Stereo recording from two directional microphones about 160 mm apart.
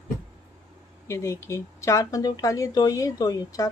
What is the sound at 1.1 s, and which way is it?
Speech, 20° left (ahead or behind).